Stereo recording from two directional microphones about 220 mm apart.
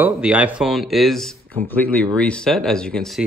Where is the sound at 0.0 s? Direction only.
5° right (ahead or behind).